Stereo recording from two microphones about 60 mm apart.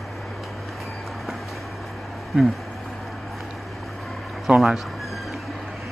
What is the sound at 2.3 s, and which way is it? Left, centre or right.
Speech, centre.